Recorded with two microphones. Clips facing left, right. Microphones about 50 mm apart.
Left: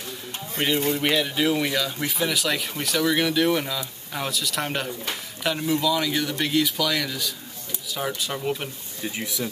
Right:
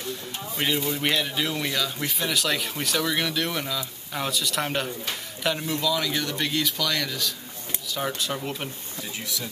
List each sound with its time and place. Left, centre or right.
0.9 s speech: centre
9.0 s speech: left